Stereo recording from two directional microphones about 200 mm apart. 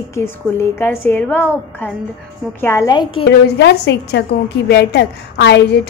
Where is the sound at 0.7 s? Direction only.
10° left (ahead or behind).